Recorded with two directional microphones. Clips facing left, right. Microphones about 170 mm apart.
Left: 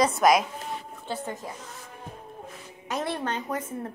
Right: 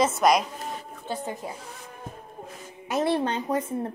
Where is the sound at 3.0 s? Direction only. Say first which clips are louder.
Right 7 dB; 30° right (ahead or behind).